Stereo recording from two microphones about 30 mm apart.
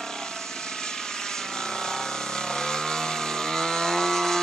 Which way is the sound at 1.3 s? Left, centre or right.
Left.